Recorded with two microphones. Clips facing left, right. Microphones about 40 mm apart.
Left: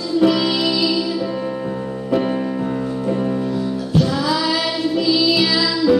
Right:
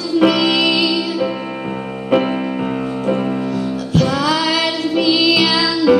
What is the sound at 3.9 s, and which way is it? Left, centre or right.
Music, right.